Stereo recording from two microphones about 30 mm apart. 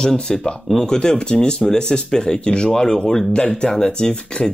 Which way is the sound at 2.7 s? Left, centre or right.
Left.